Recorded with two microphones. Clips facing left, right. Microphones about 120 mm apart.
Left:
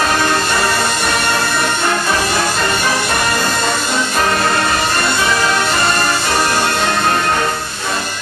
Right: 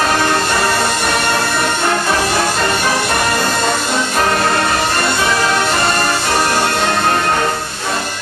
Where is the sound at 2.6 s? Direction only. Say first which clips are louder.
Right 1 dB; 35° right (ahead or behind).